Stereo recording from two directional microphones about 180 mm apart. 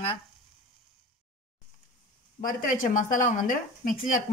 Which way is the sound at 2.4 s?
50° left (ahead or behind).